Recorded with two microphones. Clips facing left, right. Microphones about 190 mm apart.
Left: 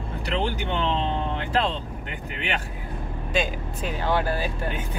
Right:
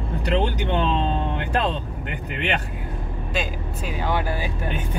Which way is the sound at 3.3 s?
10° right (ahead or behind).